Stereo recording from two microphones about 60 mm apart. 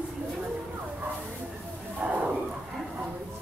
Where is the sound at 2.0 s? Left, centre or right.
Right.